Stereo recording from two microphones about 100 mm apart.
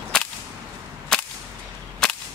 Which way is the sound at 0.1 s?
5° left (ahead or behind).